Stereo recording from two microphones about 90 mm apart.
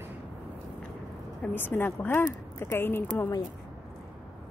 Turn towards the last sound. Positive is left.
turn(degrees=25)  # may be behind; listen again after turning